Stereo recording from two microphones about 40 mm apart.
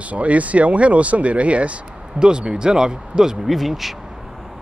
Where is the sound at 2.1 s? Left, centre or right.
Right.